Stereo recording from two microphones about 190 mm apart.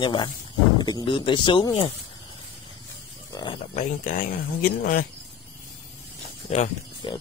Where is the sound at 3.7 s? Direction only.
40° left (ahead or behind).